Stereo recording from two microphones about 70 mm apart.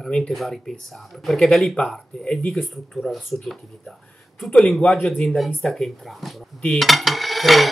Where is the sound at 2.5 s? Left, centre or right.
Centre.